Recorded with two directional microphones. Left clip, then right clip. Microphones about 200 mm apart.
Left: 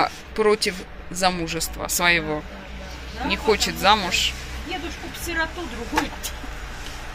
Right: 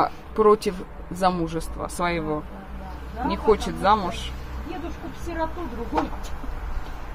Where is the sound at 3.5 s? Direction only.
10° right (ahead or behind).